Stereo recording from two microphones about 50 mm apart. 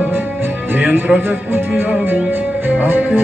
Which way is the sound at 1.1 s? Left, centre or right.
Right.